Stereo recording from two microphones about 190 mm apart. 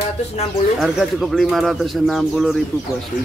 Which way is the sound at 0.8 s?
Centre (ahead or behind).